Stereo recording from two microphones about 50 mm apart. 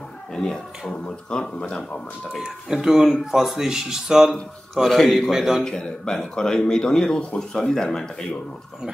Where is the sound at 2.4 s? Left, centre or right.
Centre.